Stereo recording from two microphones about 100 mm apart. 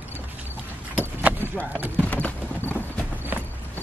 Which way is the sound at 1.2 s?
20° right (ahead or behind).